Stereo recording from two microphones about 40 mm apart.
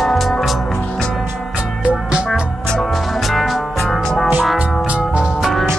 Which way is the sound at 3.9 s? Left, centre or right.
Centre.